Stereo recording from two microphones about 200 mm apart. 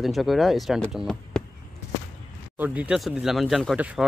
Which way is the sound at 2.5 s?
10° right (ahead or behind).